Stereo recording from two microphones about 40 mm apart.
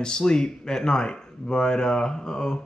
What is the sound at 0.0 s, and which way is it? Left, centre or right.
Speech, centre.